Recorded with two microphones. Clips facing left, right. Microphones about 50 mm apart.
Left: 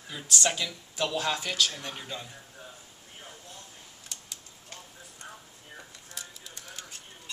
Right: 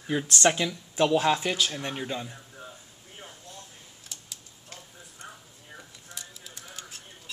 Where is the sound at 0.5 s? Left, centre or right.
Right.